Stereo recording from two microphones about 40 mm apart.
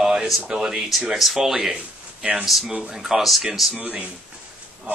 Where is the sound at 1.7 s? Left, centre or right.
Right.